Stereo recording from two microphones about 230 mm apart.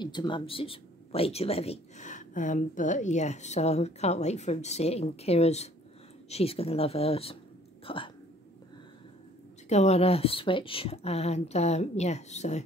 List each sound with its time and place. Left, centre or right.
0.0 s speech: centre
9.7 s speech: left